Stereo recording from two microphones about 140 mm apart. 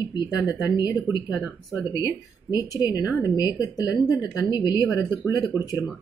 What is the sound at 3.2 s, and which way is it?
Speech, 30° left (ahead or behind).